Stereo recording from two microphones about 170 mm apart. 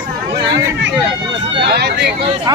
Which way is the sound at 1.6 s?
70° right (ahead or behind).